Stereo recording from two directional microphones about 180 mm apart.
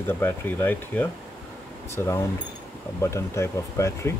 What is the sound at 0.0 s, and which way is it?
Speech, 10° left (ahead or behind).